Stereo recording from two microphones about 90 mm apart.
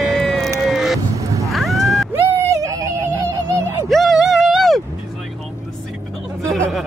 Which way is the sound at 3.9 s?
Centre (ahead or behind).